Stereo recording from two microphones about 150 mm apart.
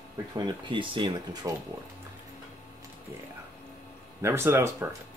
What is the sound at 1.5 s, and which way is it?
Speech, 20° right (ahead or behind).